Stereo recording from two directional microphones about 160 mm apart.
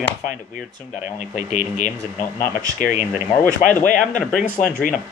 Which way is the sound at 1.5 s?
45° left (ahead or behind).